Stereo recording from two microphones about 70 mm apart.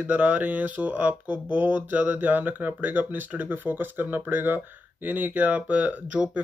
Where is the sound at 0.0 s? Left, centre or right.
Right.